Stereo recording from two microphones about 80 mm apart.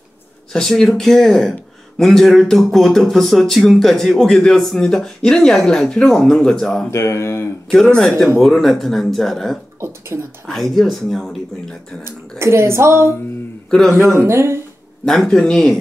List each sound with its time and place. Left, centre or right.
0.5 s speech: centre
6.9 s speech: left
7.8 s speech: centre
9.8 s speech: right
10.4 s speech: centre
12.0 s speech: right
13.7 s speech: centre
14.0 s speech: right
15.0 s speech: centre